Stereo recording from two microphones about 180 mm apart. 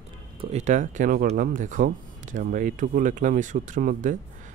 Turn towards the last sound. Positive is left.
turn(degrees=-45)  # may be behind; listen again after turning